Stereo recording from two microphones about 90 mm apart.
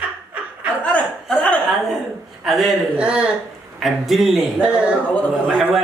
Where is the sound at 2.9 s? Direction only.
10° right (ahead or behind).